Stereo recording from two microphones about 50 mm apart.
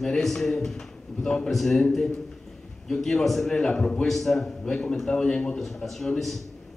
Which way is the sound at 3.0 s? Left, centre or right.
Centre.